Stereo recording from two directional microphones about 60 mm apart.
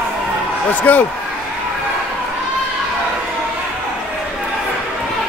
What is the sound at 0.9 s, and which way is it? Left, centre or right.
Speech, left.